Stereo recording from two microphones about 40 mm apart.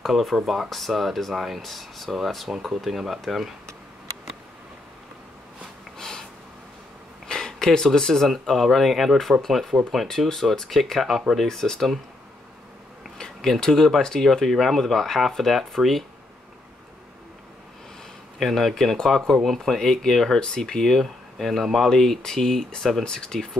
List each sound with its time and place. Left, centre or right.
0.0 s speech: centre
5.9 s snort: centre
7.2 s a sound: centre
8.5 s speech: centre
11.4 s speech: centre
13.2 s speech: centre
18.4 s speech: centre